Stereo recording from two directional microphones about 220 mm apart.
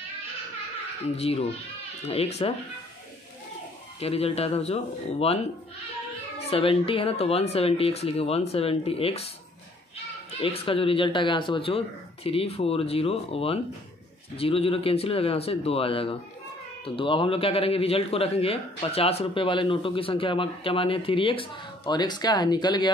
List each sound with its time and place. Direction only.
1.1 s a man's voice: 25° left (ahead or behind)
4.0 s a man's voice: 25° left (ahead or behind)
6.4 s a man's voice: 25° left (ahead or behind)
10.4 s a man's voice: 25° left (ahead or behind)